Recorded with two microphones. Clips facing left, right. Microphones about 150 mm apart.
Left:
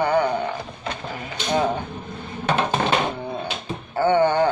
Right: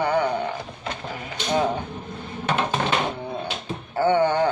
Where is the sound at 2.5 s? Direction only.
35° left (ahead or behind).